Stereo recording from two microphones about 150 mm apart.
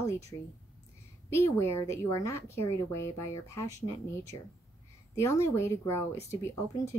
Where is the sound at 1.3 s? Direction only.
15° left (ahead or behind).